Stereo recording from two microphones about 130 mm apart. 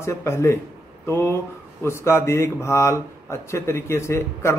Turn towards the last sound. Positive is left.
turn(degrees=20)  # may be behind; listen again after turning